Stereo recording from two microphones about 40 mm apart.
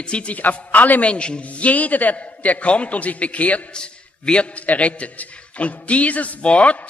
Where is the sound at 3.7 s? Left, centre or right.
Left.